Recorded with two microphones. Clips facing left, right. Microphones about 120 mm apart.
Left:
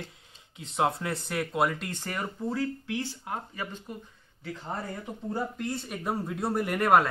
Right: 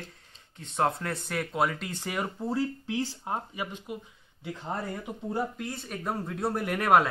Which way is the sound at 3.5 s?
10° right (ahead or behind).